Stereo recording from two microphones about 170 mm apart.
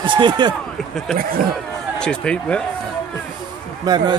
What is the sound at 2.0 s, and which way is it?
Speech, 5° left (ahead or behind).